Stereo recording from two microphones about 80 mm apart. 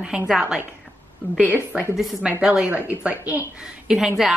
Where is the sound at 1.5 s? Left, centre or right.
Centre.